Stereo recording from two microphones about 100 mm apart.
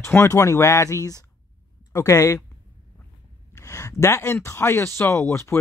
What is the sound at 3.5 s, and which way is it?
Speech, 30° left (ahead or behind).